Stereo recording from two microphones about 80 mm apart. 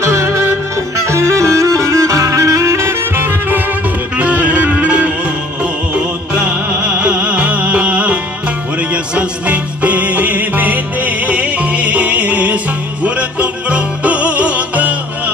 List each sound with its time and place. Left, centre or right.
0.0 s music: right; by 15.3 s centre